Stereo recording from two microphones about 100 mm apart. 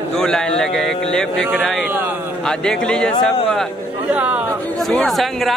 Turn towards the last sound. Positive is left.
turn(degrees=5)  # may be behind; listen again after turning